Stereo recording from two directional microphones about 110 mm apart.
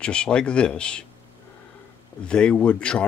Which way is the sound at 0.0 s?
10° left (ahead or behind).